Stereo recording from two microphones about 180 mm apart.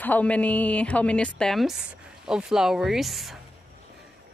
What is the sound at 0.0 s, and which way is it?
A woman's voice, 10° left (ahead or behind).